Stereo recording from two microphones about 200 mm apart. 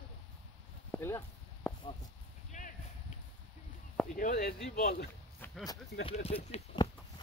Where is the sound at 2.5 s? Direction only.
40° left (ahead or behind).